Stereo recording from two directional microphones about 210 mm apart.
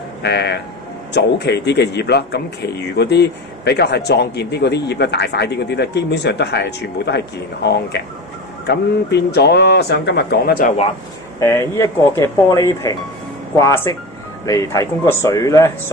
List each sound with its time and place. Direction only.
0.2 s a man's voice: 50° left (ahead or behind)
11.3 s speech: 10° left (ahead or behind)